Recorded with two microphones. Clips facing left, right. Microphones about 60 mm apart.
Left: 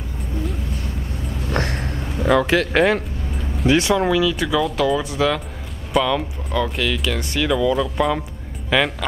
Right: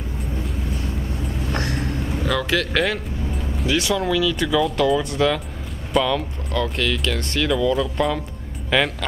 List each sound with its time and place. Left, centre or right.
1.5 s vehicle: left
3.6 s speech: left
4.1 s speech: centre